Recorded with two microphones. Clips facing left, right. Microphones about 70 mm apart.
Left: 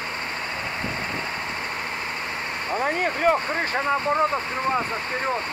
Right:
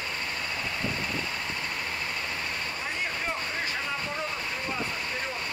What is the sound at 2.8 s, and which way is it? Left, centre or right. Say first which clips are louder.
Speech: left 13 dB; left.